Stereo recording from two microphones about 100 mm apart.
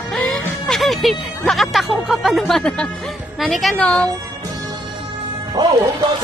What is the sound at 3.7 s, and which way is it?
Speech, 10° left (ahead or behind).